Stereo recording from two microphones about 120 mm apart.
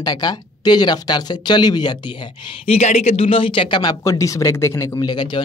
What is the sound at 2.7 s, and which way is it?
Speech, 60° left (ahead or behind).